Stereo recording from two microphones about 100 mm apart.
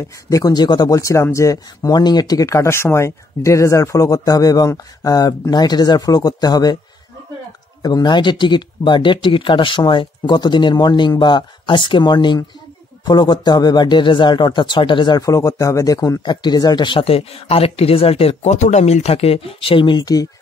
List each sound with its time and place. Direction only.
0.3 s speech: 40° left (ahead or behind)
7.8 s speech: 45° left (ahead or behind)
15.2 s speech: 35° left (ahead or behind); by 17.0 s 50° left (ahead or behind)
17.0 s speech: 75° left (ahead or behind); by 20.2 s 45° left (ahead or behind)